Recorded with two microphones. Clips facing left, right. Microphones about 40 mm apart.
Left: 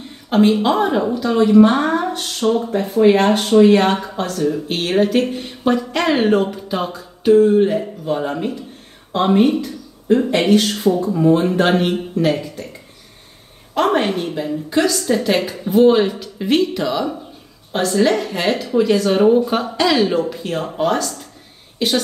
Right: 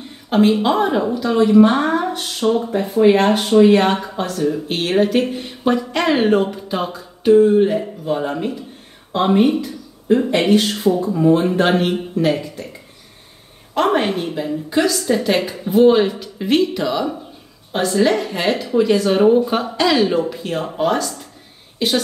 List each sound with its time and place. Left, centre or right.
0.0 s a woman's voice: centre
13.7 s a woman's voice: centre